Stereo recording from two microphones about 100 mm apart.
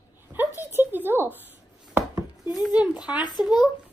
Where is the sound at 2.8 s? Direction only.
10° right (ahead or behind).